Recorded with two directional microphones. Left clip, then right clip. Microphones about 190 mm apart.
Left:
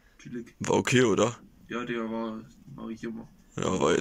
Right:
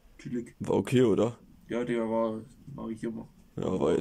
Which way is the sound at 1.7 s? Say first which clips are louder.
Right 3 dB; 30° right (ahead or behind).